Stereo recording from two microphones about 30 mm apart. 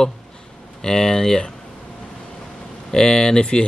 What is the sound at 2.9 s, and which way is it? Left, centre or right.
Speech, left.